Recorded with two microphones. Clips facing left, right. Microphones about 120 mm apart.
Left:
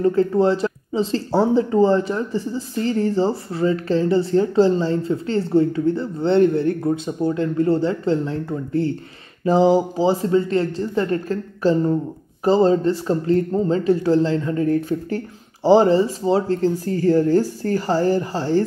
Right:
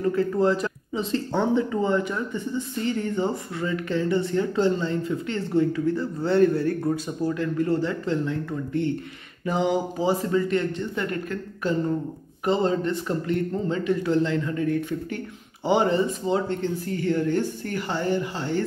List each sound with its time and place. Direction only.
0.0 s speech: 30° left (ahead or behind)